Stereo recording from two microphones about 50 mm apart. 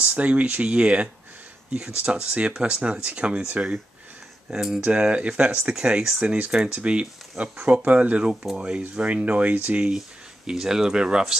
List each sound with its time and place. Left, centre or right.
0.0 s speech: right
4.5 s speech: centre
4.8 s speech: right
9.8 s speech: centre